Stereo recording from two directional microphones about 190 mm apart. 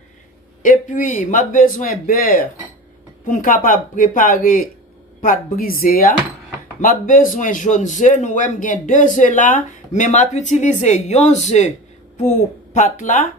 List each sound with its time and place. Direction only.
0.6 s a man's voice: 45° left (ahead or behind)
12.7 s a man's voice: 40° left (ahead or behind)